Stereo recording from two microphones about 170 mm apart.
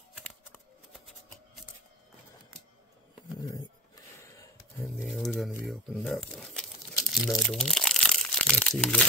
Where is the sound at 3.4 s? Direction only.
20° left (ahead or behind).